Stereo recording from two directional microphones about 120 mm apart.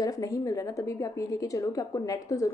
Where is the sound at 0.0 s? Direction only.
30° left (ahead or behind).